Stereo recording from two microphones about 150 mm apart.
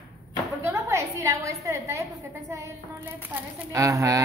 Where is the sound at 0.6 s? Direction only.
15° right (ahead or behind).